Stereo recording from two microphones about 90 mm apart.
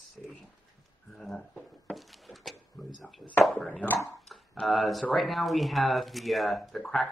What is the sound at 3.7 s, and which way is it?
Speech, 15° left (ahead or behind).